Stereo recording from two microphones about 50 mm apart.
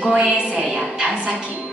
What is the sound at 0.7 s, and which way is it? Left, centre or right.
Speech, centre.